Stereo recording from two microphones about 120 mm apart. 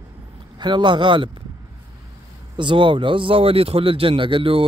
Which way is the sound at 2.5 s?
40° right (ahead or behind).